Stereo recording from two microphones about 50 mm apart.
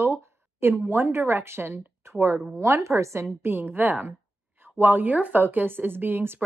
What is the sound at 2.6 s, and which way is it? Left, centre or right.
Speech, right.